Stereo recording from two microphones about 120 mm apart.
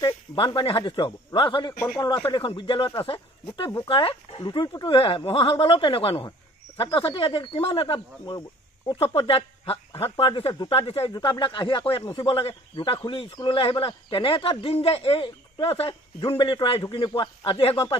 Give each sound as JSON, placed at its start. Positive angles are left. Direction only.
{"t": 0.0, "sound": "speech", "side_deg": 40}
{"t": 2.3, "sound": "speech", "side_deg": 45}
{"t": 8.3, "sound": "speech", "side_deg": 35}
{"t": 9.2, "sound": "speech", "side_deg": 55}
{"t": 11.1, "sound": "speech", "side_deg": 40}